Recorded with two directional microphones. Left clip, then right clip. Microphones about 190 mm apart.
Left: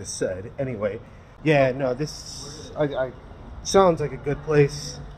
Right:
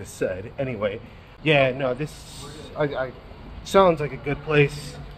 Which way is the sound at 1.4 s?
15° left (ahead or behind).